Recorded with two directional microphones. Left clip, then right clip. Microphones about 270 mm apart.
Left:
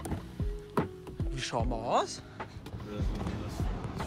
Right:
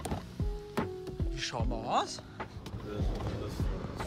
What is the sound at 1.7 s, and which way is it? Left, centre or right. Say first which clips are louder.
Speech: left 1 dB; centre.